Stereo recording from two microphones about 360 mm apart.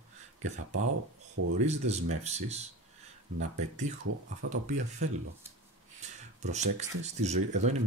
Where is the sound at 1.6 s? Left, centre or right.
Centre.